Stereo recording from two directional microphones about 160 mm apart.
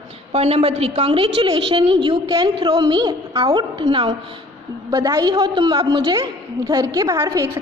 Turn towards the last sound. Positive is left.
turn(degrees=-20)  # may be behind; listen again after turning